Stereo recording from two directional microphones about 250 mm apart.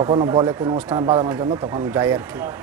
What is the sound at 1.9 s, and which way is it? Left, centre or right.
Speech, centre.